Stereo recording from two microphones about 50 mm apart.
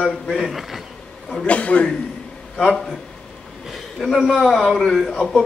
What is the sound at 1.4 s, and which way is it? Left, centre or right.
Speech, left.